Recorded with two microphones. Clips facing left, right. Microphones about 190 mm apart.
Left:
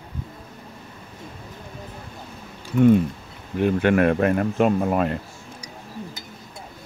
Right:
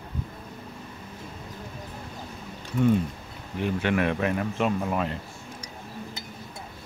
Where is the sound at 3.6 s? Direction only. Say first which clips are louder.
Left 7 dB; 50° left (ahead or behind).